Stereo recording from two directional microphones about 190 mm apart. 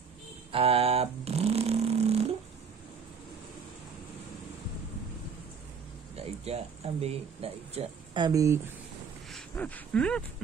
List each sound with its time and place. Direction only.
0.5 s a sound: 30° right (ahead or behind)
6.1 s speech: 35° right (ahead or behind)
9.3 s speech: 5° left (ahead or behind)